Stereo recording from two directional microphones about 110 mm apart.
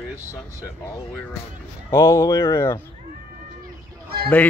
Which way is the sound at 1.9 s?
25° left (ahead or behind).